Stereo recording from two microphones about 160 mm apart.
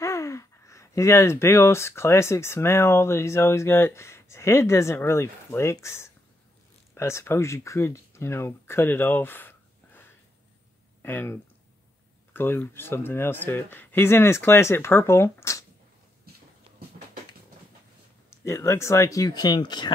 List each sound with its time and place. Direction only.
0.0 s speech: 20° left (ahead or behind)
12.4 s speech: 15° left (ahead or behind)
18.3 s speech: 15° left (ahead or behind)